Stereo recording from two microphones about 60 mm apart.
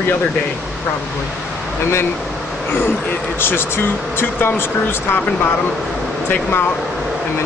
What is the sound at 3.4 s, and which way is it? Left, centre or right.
Speech, left.